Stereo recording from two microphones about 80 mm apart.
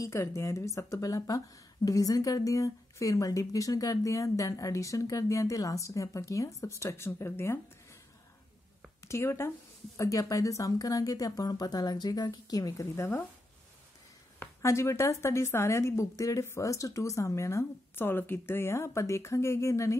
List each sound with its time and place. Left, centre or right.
0.0 s a woman's voice: left
9.0 s speech: left
9.9 s speech: left
14.6 s a woman's voice: left